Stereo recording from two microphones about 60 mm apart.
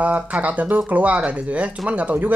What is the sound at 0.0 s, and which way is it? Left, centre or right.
Speech, right.